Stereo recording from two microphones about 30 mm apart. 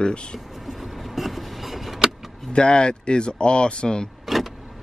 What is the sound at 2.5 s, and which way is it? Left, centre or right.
Speech, left.